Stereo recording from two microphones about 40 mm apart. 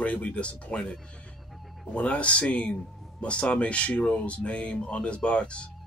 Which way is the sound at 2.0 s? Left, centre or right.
Left.